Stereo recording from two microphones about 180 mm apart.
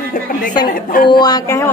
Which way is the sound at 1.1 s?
20° left (ahead or behind).